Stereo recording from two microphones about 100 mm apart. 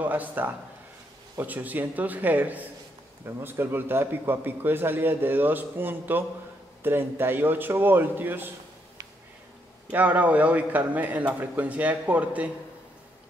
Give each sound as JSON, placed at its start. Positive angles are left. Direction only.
{"t": 0.0, "sound": "a man's voice", "side_deg": -15}
{"t": 9.8, "sound": "a man's voice", "side_deg": -15}